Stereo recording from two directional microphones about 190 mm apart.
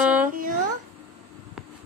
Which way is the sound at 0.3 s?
45° right (ahead or behind).